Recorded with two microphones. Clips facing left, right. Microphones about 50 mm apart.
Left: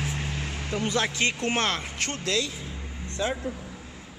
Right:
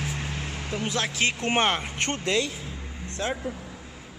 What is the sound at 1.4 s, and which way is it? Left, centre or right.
Speech, right.